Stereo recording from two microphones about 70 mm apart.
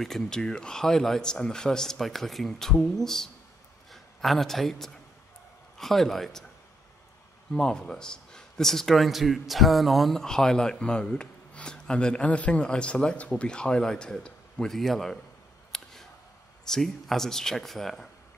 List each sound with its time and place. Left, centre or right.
0.0 s a man's voice: centre
7.5 s speech: centre
15.7 s a sound: centre
16.6 s speech: centre